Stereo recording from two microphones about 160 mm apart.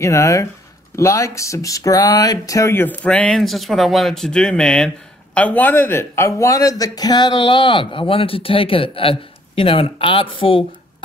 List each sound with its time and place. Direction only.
0.0 s speech: 20° left (ahead or behind)